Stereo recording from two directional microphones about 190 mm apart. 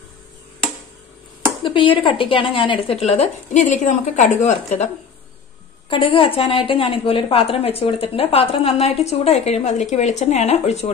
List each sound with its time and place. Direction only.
1.6 s a woman's voice: 25° left (ahead or behind)
5.9 s a woman's voice: 25° left (ahead or behind)